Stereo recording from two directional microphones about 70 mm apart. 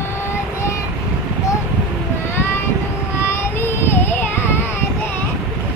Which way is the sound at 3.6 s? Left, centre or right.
Left.